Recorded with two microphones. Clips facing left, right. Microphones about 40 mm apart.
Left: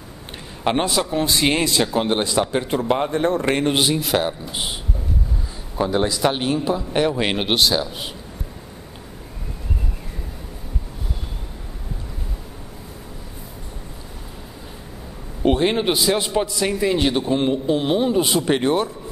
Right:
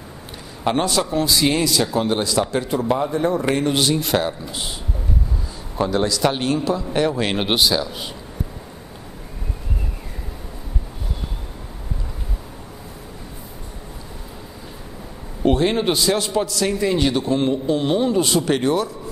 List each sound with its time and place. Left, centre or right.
0.7 s speech: centre
1.1 s a man's voice: left
2.7 s a man's voice: left
3.9 s speech: centre
4.3 s speech: left
5.9 s a man's voice: centre
7.3 s speech: centre
7.8 s a man's voice: centre
15.4 s a man's voice: centre